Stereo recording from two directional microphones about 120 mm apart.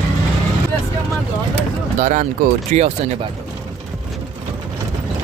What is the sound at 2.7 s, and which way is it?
Speech, 65° right (ahead or behind).